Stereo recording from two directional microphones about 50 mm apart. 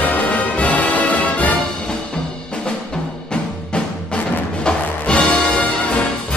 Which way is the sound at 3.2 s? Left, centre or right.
Centre.